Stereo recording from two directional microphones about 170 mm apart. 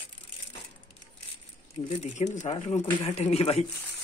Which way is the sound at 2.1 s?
45° left (ahead or behind).